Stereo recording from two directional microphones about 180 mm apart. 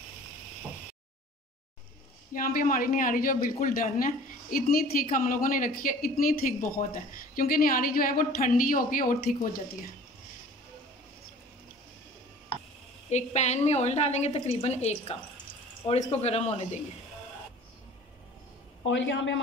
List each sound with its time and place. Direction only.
2.3 s speech: 50° left (ahead or behind)
13.1 s a woman's voice: 40° left (ahead or behind)
18.9 s a man's voice: 90° left